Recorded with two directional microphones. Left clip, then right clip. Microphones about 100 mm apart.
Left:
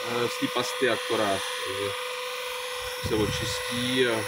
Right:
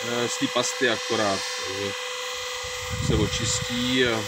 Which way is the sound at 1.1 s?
35° right (ahead or behind).